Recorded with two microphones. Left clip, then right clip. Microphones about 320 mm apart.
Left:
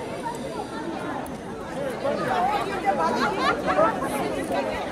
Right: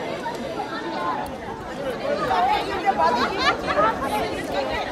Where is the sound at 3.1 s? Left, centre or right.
Right.